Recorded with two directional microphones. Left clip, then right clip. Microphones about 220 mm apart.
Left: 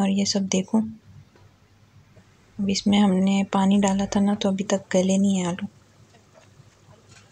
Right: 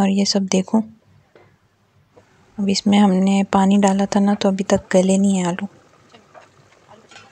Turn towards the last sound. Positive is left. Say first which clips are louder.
# right 5 dB
turn(degrees=-40)  # may be behind; listen again after turning